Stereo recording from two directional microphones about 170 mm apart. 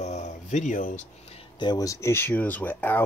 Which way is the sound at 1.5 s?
25° left (ahead or behind).